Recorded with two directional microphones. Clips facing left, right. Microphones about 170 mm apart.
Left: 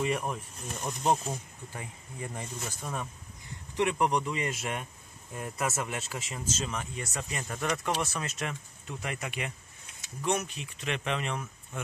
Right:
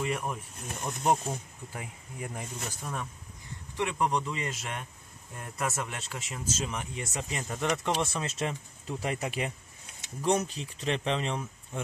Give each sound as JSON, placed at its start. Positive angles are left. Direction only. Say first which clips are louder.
{"t": 0.1, "sound": "speech", "louder": "left 1 dB", "side_deg": 0}
{"t": 3.7, "sound": "speech", "louder": "left 2 dB", "side_deg": 15}
{"t": 5.4, "sound": "speech", "louder": "left 1 dB", "side_deg": 5}
{"t": 6.6, "sound": "speech", "louder": "even", "side_deg": -15}